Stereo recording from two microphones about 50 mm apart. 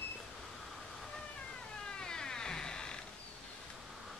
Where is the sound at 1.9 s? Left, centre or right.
Centre.